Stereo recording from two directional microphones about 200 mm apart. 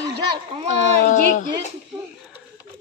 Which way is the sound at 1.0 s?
40° left (ahead or behind).